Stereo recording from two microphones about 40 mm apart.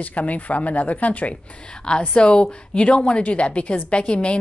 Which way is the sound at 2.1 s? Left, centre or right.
Left.